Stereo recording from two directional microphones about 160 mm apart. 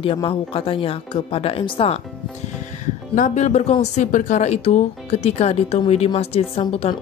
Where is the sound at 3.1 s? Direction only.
50° left (ahead or behind).